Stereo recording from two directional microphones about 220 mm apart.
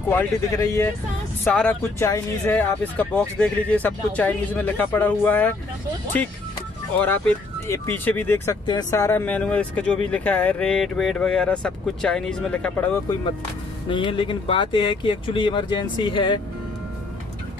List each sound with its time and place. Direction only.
0.1 s speech: 10° left (ahead or behind)
7.0 s speech: 10° left (ahead or behind)
13.8 s speech: 25° left (ahead or behind)